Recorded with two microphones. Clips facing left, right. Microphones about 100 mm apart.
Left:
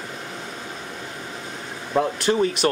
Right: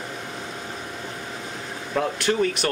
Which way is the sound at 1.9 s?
20° left (ahead or behind).